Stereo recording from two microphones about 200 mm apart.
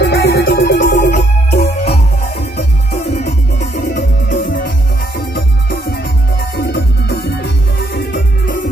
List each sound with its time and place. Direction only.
0.0 s music: 55° left (ahead or behind)
3.3 s music: 45° left (ahead or behind)